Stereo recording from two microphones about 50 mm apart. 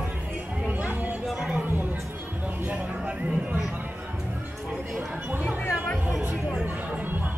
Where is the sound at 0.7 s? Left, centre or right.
Right.